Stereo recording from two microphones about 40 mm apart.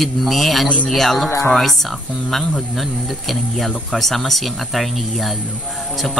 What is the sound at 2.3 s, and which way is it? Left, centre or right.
Speech, centre.